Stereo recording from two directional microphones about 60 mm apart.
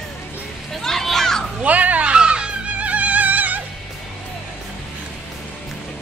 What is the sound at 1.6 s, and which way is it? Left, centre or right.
Music, right.